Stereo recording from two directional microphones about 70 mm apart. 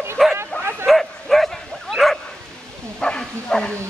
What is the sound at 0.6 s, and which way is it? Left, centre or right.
Bow-wow, right.